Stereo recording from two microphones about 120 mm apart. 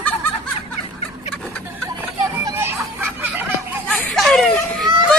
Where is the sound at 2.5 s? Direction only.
20° right (ahead or behind).